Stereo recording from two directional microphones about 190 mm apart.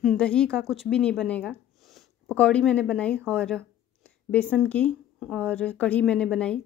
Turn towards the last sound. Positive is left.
turn(degrees=5)  # may be behind; listen again after turning